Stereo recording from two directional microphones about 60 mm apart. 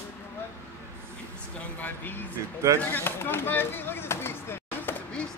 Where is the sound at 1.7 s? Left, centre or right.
Left.